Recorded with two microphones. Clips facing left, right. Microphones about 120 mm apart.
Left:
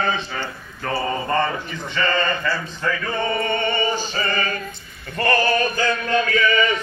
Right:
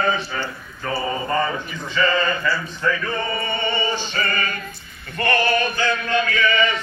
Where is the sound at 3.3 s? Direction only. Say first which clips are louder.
Left 3 dB; 50° left (ahead or behind).